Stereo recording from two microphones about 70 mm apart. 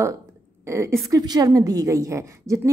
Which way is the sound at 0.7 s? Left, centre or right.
Right.